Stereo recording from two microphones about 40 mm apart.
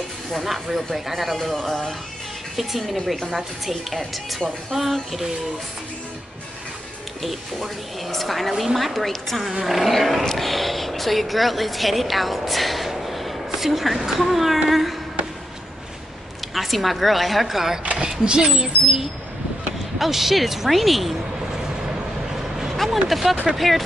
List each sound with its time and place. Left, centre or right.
0.3 s speech: centre
4.7 s speech: centre
7.2 s speech: centre
9.5 s speech: centre
16.5 s speech: centre
17.9 s speech: centre
20.0 s speech: centre
22.7 s speech: centre